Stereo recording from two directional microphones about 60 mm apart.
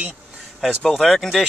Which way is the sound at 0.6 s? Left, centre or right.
Centre.